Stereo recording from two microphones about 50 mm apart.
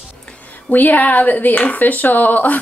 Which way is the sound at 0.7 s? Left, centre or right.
Left.